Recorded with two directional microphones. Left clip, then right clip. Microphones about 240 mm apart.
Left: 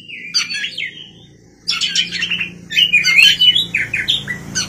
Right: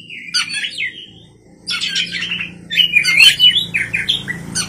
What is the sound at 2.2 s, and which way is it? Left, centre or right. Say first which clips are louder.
Bird: left 2 dB; left.